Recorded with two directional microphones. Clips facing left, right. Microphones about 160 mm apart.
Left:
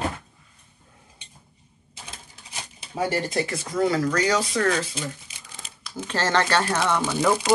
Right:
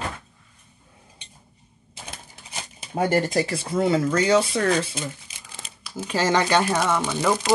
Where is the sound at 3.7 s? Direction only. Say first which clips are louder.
Right 1 dB; 25° right (ahead or behind).